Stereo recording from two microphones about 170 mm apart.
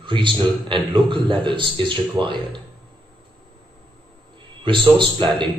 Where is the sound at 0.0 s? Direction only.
30° right (ahead or behind).